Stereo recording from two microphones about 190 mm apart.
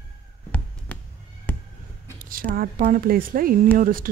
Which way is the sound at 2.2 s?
50° right (ahead or behind).